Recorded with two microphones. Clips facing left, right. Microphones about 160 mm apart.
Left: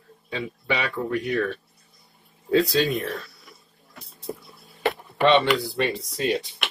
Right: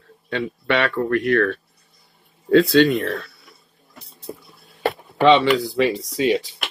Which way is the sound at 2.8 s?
Centre (ahead or behind).